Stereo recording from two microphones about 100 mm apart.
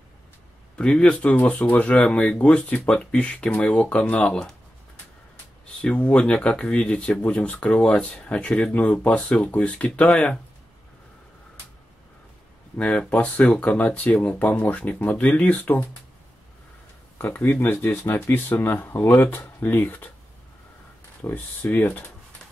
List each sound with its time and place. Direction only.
0.7 s speech: 10° left (ahead or behind)
5.8 s speech: 10° left (ahead or behind)
12.7 s speech: 10° left (ahead or behind)
17.2 s speech: 15° left (ahead or behind)
21.2 s speech: 20° left (ahead or behind)